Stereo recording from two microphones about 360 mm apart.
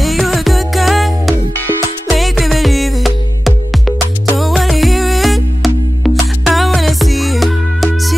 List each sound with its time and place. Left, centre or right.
0.0 s music: centre